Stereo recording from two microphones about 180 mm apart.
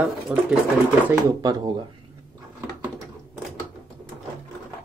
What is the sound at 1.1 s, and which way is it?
Speech, 20° right (ahead or behind).